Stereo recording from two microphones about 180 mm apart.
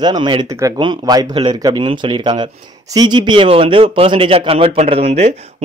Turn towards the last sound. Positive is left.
turn(degrees=-35)  # may be behind; listen again after turning